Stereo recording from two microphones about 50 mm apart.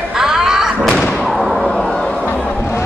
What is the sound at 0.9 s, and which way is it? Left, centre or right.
Thump, centre.